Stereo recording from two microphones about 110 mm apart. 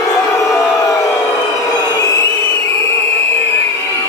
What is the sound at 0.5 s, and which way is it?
Crowd, 30° left (ahead or behind).